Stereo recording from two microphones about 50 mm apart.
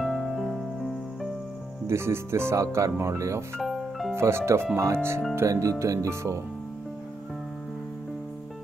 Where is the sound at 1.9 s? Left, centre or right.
Right.